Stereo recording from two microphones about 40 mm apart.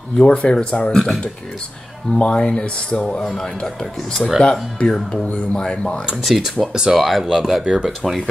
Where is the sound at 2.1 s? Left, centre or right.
Left.